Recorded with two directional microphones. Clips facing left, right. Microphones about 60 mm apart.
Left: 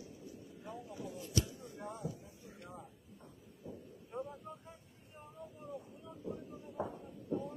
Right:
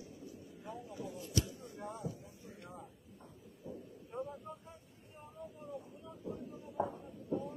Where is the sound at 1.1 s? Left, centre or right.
Centre.